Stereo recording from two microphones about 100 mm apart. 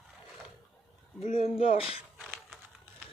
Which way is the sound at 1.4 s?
65° left (ahead or behind).